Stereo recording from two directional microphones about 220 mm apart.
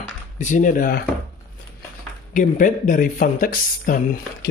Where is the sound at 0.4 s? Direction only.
35° left (ahead or behind).